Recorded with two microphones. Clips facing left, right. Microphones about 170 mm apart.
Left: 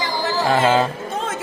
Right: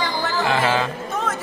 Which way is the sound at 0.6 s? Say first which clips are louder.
Left 4 dB; 30° left (ahead or behind).